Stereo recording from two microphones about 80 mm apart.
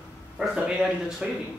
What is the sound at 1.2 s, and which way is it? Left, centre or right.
Speech, centre.